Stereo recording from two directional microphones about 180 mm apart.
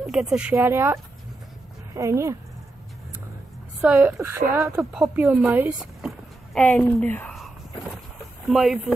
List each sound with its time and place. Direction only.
0.0 s speech: centre (ahead or behind)
2.0 s speech: 15° right (ahead or behind)
3.8 s speech: 10° right (ahead or behind)
5.0 s a sound: 5° right (ahead or behind)
8.5 s speech: centre (ahead or behind)